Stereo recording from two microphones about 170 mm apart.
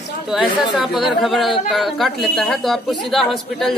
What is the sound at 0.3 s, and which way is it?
Speech, centre (ahead or behind).